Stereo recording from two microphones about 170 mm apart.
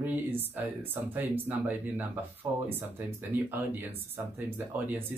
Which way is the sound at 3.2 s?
10° right (ahead or behind).